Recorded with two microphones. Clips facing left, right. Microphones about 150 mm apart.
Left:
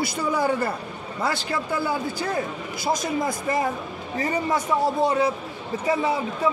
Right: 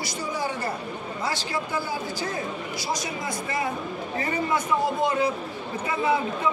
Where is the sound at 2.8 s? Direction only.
50° left (ahead or behind).